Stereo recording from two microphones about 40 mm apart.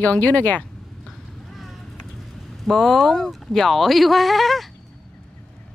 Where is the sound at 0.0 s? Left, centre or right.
Left.